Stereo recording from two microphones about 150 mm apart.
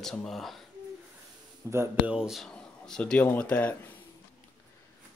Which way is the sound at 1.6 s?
15° right (ahead or behind).